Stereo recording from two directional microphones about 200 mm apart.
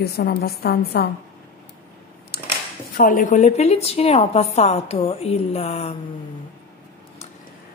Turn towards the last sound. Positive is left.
turn(degrees=30)  # may be behind; listen again after turning